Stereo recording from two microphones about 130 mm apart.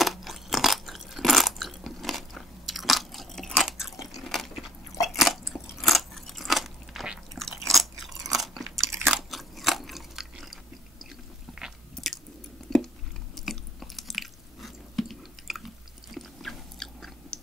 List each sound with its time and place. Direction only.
0.0 s chewing: centre (ahead or behind)
4.1 s biting: centre (ahead or behind)
5.1 s a sound: centre (ahead or behind)
5.5 s biting: centre (ahead or behind)
8.7 s biting: 20° right (ahead or behind)
9.1 s biting: centre (ahead or behind)
11.9 s chewing: centre (ahead or behind)
16.2 s biting: centre (ahead or behind)